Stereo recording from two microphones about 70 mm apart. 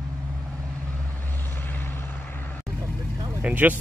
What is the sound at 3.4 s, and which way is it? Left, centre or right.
Vehicle, right.